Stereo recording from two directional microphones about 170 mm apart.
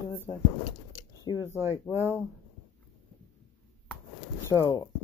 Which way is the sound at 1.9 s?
Centre (ahead or behind).